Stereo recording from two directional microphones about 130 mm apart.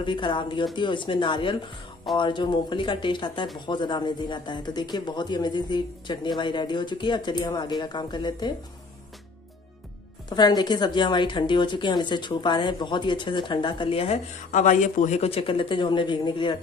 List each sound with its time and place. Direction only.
0.0 s a woman's voice: 40° left (ahead or behind)
10.3 s a woman's voice: 30° left (ahead or behind)